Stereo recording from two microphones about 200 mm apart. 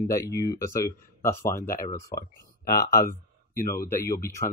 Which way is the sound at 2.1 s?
50° left (ahead or behind).